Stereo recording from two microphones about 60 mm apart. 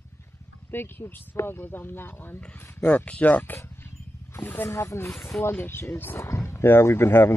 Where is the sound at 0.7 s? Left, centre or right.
Left.